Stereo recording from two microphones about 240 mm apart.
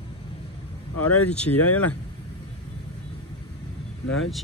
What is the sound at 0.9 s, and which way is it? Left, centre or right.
Speech, left.